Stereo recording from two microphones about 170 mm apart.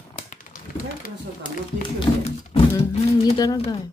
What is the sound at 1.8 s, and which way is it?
Speech, 30° left (ahead or behind).